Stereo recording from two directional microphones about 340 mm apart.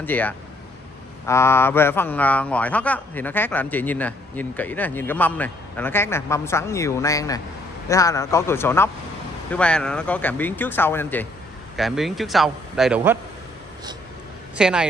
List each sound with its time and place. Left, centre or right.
0.0 s a man's voice: centre
14.6 s speech: centre